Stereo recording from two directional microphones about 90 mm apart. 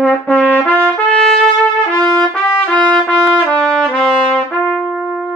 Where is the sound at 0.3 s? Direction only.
15° left (ahead or behind).